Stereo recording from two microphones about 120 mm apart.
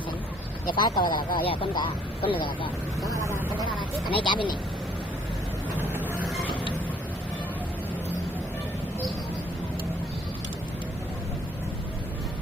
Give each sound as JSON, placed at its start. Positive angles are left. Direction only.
{"t": 0.7, "sound": "speech", "side_deg": 40}
{"t": 4.1, "sound": "speech", "side_deg": 45}
{"t": 5.8, "sound": "vehicle", "side_deg": -15}